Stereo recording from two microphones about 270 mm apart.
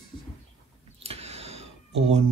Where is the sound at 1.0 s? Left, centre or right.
Right.